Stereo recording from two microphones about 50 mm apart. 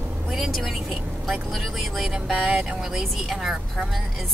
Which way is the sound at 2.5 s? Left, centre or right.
Centre.